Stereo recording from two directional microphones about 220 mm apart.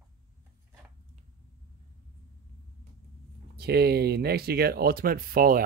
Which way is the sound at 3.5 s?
45° right (ahead or behind).